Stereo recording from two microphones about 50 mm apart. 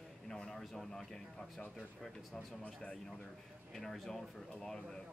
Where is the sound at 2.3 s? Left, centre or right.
Left.